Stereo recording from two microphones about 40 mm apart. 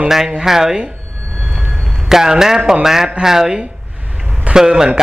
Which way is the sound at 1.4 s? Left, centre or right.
Centre.